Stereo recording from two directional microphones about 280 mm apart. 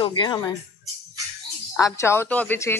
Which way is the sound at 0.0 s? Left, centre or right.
Centre.